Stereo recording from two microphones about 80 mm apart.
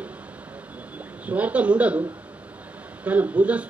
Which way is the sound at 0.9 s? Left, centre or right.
Centre.